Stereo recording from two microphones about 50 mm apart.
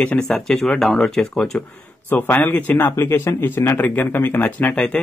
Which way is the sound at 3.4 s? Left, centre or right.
Left.